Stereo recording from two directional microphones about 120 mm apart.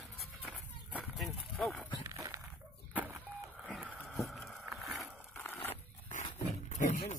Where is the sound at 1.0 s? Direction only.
Centre (ahead or behind).